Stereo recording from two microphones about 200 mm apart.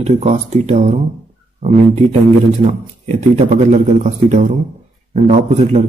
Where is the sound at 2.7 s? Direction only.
35° right (ahead or behind).